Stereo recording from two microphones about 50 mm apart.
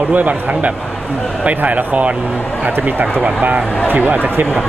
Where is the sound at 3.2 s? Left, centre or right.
Right.